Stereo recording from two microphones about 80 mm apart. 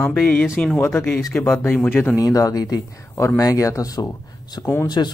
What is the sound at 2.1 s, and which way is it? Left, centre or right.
Speech, left.